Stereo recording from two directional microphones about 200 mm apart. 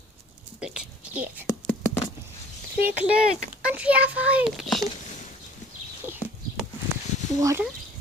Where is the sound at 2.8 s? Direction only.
5° right (ahead or behind).